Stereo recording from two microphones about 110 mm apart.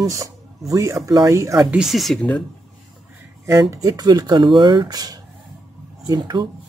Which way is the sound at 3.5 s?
30° right (ahead or behind).